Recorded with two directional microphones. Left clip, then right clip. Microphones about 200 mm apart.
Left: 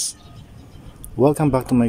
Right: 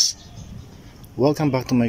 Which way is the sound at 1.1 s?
5° left (ahead or behind).